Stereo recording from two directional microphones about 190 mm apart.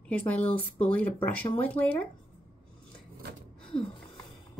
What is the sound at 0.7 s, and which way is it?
Speech, 10° left (ahead or behind).